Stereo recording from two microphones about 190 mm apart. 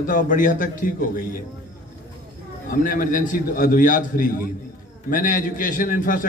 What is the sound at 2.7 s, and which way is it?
A man's voice, 45° left (ahead or behind).